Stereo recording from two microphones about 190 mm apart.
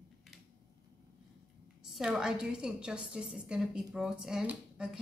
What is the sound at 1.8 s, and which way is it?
A woman's voice, 5° right (ahead or behind).